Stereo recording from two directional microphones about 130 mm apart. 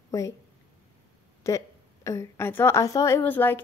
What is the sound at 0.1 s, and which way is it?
Speech, 25° left (ahead or behind).